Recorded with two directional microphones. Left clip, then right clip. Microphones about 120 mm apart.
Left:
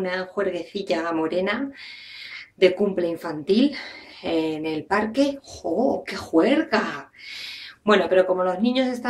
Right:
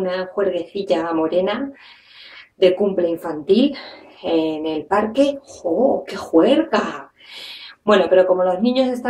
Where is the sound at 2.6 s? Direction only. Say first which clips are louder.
Right 4 dB; 20° left (ahead or behind).